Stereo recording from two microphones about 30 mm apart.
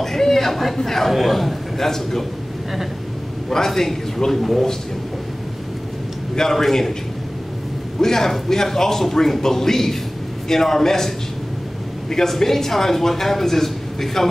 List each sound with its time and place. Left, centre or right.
0.0 s a sound: centre
0.7 s speech: centre
3.4 s speech: centre
6.3 s speech: centre
8.0 s speech: centre
12.1 s speech: centre